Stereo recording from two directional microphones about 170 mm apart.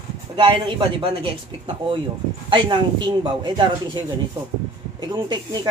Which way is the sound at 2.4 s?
25° right (ahead or behind).